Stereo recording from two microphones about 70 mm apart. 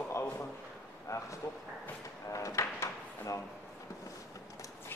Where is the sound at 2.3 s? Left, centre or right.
Left.